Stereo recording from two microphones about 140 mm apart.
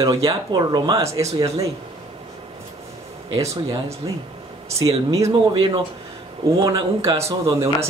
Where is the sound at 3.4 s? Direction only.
20° right (ahead or behind).